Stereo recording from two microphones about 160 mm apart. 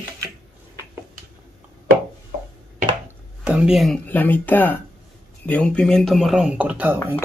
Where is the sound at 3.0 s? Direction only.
5° right (ahead or behind).